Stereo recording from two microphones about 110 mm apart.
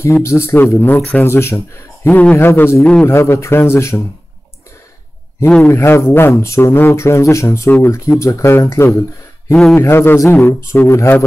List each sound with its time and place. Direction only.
0.0 s speech: 25° left (ahead or behind)
5.6 s speech: 25° left (ahead or behind)
9.5 s speech: centre (ahead or behind)
9.8 s speech: 20° left (ahead or behind)